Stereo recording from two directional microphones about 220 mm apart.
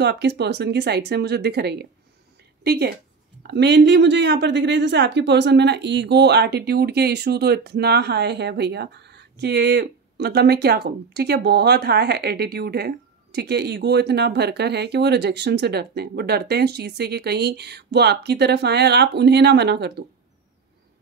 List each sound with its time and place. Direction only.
0.0 s a woman's voice: 50° right (ahead or behind)